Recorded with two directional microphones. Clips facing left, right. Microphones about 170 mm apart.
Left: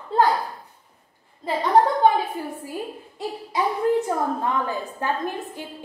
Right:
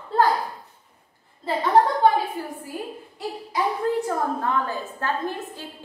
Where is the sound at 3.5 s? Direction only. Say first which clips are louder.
Left 3 dB; 20° left (ahead or behind).